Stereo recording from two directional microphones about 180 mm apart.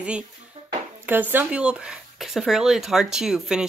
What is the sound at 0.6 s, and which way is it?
Dishes, 35° right (ahead or behind).